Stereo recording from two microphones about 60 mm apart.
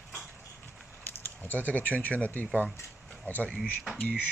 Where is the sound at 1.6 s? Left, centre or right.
Left.